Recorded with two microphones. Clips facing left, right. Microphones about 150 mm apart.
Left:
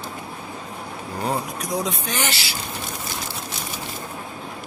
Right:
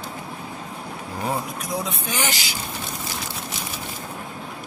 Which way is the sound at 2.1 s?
15° right (ahead or behind).